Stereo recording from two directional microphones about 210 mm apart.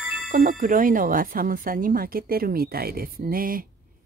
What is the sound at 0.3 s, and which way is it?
Speech, 40° right (ahead or behind).